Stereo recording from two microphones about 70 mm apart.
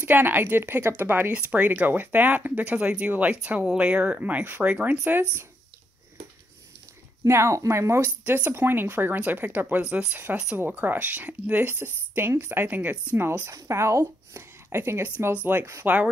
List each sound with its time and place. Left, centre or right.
0.0 s speech: right
7.2 s speech: right
8.2 s speech: right
13.5 s a woman's voice: right